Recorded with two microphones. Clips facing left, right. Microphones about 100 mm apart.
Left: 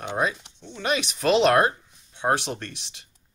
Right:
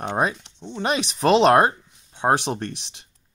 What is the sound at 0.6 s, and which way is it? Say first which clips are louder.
Speech: right 2 dB; 30° right (ahead or behind).